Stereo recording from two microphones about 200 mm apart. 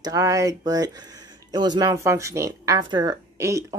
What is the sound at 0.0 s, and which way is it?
Speech, 15° right (ahead or behind).